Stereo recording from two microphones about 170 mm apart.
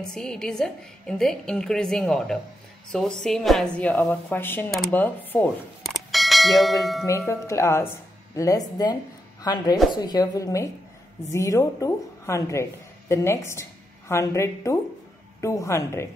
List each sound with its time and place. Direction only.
0.0 s a woman's voice: 5° left (ahead or behind)
5.9 s bell: centre (ahead or behind)
7.1 s a woman's voice: 15° left (ahead or behind)